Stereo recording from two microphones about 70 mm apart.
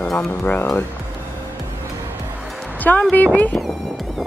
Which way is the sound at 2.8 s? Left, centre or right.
Left.